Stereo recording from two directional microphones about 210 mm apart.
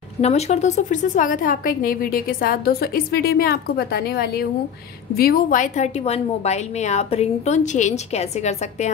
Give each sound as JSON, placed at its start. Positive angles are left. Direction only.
{"t": 0.2, "sound": "a woman's voice", "side_deg": 30}